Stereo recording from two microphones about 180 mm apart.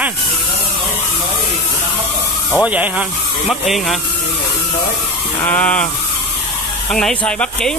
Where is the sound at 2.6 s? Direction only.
10° right (ahead or behind).